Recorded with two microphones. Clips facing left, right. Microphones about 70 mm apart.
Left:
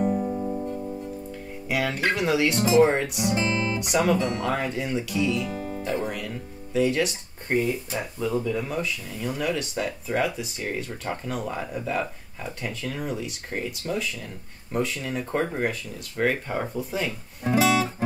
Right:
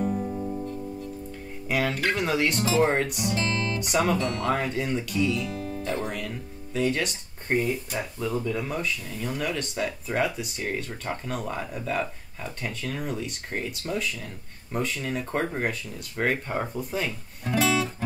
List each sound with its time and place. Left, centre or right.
0.0 s music: centre
1.7 s speech: centre
3.3 s guitar: centre
3.8 s speech: centre
5.5 s music: left
6.0 s speech: centre